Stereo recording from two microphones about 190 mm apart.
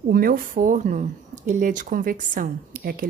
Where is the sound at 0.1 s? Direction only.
50° right (ahead or behind).